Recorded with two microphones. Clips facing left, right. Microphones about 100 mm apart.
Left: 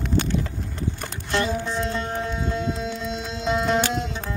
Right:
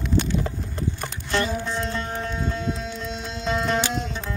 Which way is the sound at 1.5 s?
Centre (ahead or behind).